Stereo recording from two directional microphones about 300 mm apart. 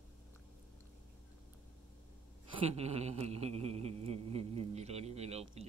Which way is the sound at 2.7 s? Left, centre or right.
Right.